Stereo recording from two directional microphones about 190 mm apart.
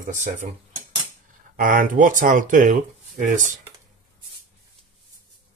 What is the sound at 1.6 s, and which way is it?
Speech, 45° right (ahead or behind).